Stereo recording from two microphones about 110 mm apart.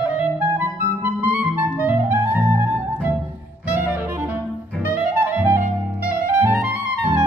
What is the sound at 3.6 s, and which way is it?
Saxophone, 15° right (ahead or behind).